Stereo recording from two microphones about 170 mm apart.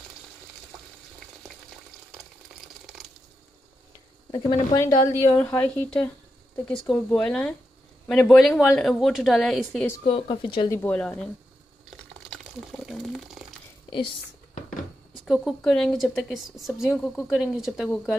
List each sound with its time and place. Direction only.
2.9 s water: 5° right (ahead or behind)
4.3 s a woman's voice: 25° left (ahead or behind); by 9.8 s centre (ahead or behind)
10.0 s speech: 30° left (ahead or behind)
10.7 s speech: 10° left (ahead or behind)
12.3 s a sound: centre (ahead or behind)
15.2 s a woman's voice: centre (ahead or behind)